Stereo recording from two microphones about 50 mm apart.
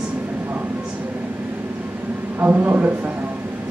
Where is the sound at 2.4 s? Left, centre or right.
Right.